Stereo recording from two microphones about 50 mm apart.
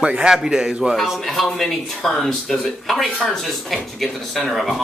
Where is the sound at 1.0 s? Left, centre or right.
Centre.